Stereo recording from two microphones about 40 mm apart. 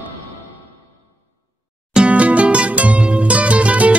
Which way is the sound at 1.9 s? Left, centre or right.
Right.